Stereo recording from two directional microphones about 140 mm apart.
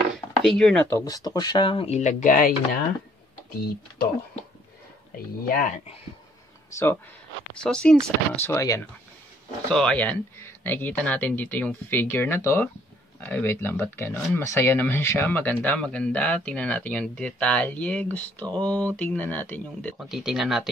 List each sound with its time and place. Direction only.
0.4 s speech: 5° left (ahead or behind)
0.9 s speech: 25° left (ahead or behind)
2.0 s speech: 60° left (ahead or behind); by 2.8 s 80° left
5.5 s speech: 75° left (ahead or behind)
6.7 s speech: 20° left (ahead or behind)
7.6 s speech: 5° left (ahead or behind)
8.4 s speech: 20° left (ahead or behind)
9.7 s speech: 5° left (ahead or behind)
20.0 s speech: centre (ahead or behind)